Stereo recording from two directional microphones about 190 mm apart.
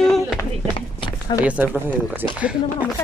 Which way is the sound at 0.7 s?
25° left (ahead or behind).